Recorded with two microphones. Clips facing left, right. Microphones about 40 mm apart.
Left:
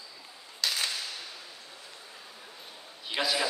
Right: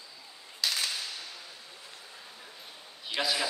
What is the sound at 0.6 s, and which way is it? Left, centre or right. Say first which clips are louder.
Whip: even; centre.